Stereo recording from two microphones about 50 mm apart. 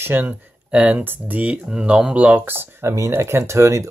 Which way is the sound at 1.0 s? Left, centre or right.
Right.